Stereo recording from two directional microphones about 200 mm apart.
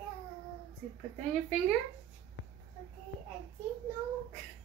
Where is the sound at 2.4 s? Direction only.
65° left (ahead or behind).